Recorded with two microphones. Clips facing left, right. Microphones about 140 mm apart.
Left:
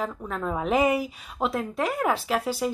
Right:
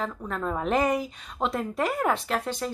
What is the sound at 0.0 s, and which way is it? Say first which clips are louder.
Speech: left 1 dB; 5° left (ahead or behind).